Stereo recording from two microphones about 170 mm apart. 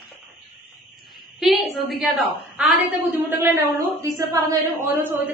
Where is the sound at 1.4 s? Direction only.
Centre (ahead or behind).